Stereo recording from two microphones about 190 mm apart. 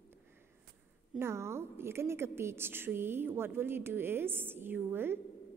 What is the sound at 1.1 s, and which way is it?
A woman's voice, 15° right (ahead or behind).